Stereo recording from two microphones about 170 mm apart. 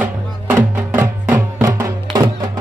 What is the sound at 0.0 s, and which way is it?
Music, 10° right (ahead or behind).